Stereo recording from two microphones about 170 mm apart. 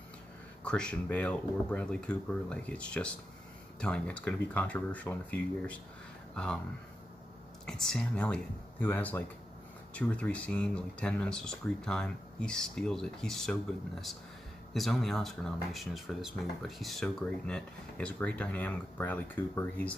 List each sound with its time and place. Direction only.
0.7 s speech: 5° left (ahead or behind)
7.6 s speech: 5° left (ahead or behind)
14.7 s speech: centre (ahead or behind)